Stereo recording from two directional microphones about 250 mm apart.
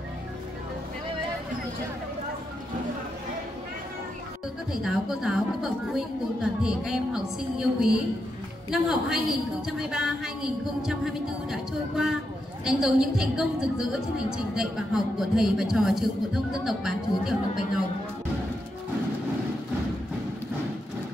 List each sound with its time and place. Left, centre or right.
4.8 s a woman's voice: centre